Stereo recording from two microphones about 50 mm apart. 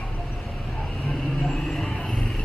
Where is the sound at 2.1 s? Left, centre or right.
Centre.